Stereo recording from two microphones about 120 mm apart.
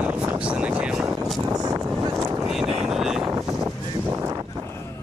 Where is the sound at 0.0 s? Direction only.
10° right (ahead or behind).